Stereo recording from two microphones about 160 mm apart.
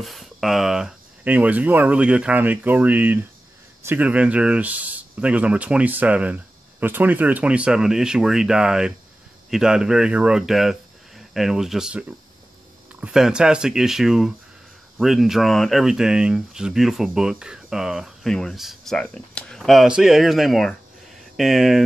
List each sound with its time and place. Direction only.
0.0 s speech: centre (ahead or behind)
13.0 s speech: 5° right (ahead or behind)